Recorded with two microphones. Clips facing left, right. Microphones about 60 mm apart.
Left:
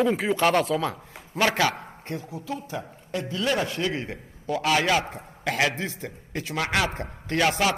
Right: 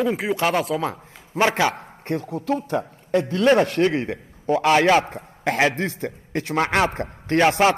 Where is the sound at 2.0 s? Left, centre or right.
Right.